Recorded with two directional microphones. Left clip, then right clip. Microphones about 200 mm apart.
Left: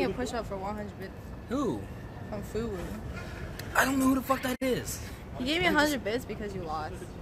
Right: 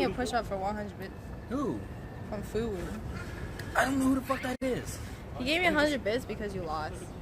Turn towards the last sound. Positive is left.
turn(degrees=-10)  # may be behind; listen again after turning